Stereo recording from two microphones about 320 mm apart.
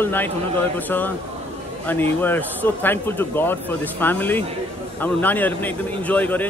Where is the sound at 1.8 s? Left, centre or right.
Centre.